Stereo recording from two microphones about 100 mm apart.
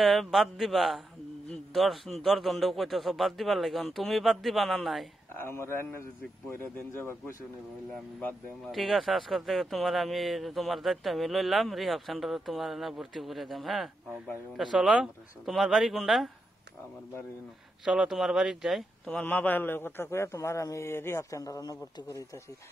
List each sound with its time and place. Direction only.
0.0 s speech: centre (ahead or behind)
5.3 s a man's voice: 25° left (ahead or behind)
8.2 s speech: 15° left (ahead or behind)
8.7 s speech: centre (ahead or behind)
17.8 s speech: 5° right (ahead or behind)
19.0 s a man's voice: 15° left (ahead or behind); by 22.2 s 35° left (ahead or behind)